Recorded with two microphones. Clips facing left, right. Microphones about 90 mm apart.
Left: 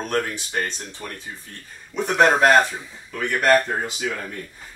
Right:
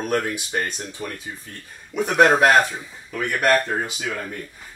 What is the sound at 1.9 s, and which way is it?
Speech, 10° right (ahead or behind).